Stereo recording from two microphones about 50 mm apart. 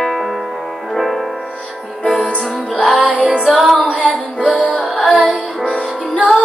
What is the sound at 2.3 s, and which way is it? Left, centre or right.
Music, centre.